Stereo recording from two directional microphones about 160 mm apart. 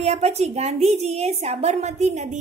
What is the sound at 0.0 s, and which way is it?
A woman's voice, 40° right (ahead or behind).